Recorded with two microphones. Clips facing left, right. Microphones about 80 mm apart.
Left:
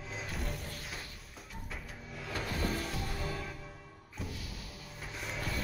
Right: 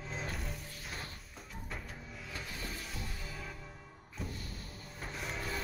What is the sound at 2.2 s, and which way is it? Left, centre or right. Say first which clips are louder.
Music: left 9 dB; left.